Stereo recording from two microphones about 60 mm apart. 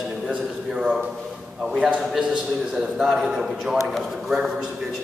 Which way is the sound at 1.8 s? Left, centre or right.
Centre.